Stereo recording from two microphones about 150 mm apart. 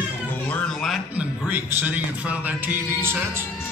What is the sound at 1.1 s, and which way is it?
A man's voice, 10° right (ahead or behind).